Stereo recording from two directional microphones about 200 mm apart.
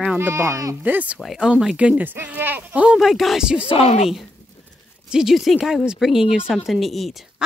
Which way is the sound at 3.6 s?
30° left (ahead or behind).